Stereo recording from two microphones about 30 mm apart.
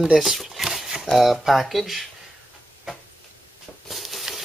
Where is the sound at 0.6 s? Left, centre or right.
Centre.